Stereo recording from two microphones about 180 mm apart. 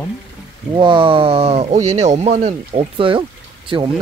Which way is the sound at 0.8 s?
25° right (ahead or behind).